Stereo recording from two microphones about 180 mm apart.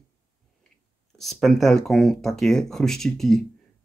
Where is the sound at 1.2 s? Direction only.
Centre (ahead or behind).